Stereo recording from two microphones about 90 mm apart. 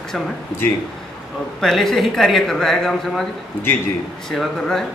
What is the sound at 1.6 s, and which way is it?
Speech, 5° left (ahead or behind).